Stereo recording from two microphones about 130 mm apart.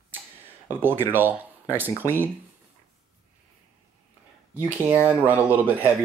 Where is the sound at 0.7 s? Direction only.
15° right (ahead or behind).